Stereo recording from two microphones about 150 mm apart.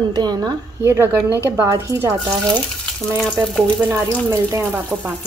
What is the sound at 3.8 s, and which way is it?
A woman's voice, 15° right (ahead or behind).